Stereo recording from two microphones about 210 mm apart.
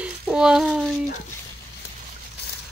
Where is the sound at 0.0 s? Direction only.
5° right (ahead or behind).